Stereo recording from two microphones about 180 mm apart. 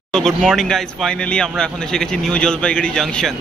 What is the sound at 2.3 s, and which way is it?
Speech, 5° left (ahead or behind).